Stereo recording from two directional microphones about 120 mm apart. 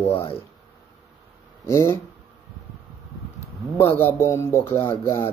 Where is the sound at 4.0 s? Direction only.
20° left (ahead or behind).